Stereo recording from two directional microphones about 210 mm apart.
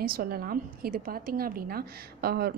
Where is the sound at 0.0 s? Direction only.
45° right (ahead or behind).